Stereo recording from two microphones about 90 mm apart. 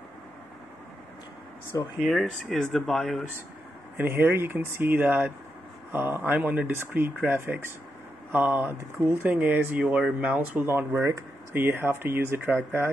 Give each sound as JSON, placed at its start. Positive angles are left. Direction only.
{"t": 1.7, "sound": "speech", "side_deg": 35}
{"t": 2.0, "sound": "speech", "side_deg": 0}
{"t": 3.9, "sound": "speech", "side_deg": -25}